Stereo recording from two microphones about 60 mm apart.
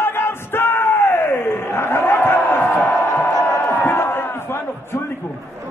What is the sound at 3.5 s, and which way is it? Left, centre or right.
Crowd, left.